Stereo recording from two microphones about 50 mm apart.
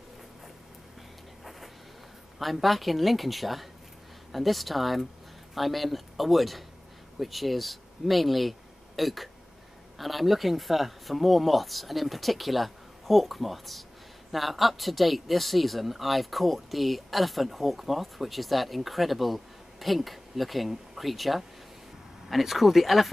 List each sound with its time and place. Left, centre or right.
2.3 s speech: centre